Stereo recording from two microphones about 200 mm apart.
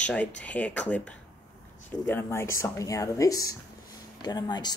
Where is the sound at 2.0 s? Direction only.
10° left (ahead or behind).